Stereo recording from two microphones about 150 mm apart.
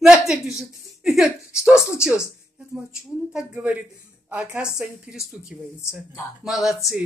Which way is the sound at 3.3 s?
5° right (ahead or behind).